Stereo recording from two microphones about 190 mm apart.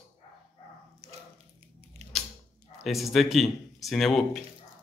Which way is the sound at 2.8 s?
Centre (ahead or behind).